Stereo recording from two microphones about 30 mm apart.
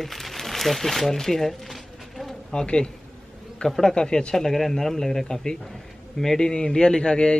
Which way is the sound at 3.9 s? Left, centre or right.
Left.